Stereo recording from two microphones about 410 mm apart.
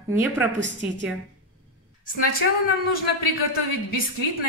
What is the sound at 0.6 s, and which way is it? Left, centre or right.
Speech, right.